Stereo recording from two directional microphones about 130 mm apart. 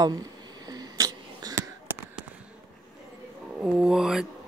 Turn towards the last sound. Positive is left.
turn(degrees=-5)  # may be behind; listen again after turning